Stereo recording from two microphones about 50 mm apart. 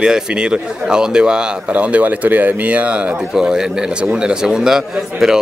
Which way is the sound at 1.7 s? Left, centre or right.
Right.